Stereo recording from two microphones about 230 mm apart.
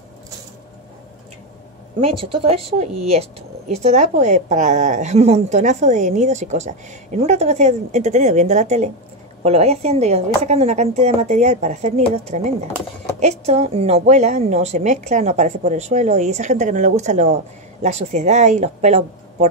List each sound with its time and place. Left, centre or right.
2.3 s speech: right
2.6 s speech: right
3.1 s speech: right